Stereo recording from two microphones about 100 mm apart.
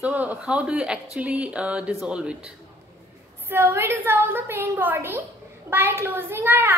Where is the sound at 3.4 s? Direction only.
20° right (ahead or behind).